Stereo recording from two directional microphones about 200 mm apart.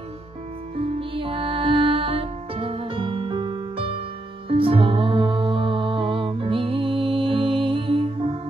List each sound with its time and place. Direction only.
0.7 s music: 30° right (ahead or behind)